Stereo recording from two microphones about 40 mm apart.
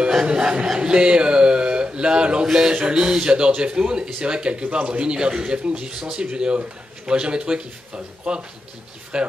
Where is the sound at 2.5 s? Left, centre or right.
Centre.